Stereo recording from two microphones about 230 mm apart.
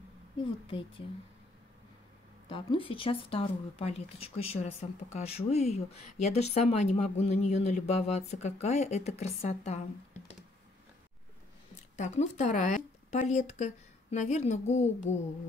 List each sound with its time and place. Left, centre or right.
0.7 s speech: left
2.5 s speech: left
12.0 s speech: left